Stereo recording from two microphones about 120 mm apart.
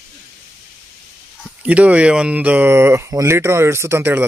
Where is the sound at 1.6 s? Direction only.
10° right (ahead or behind).